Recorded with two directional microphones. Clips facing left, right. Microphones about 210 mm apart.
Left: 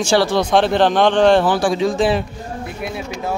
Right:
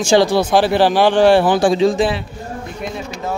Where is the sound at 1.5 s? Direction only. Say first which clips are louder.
Right 4 dB; 25° right (ahead or behind).